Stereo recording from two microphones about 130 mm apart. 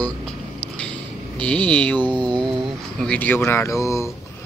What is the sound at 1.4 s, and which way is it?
Speech, 10° left (ahead or behind).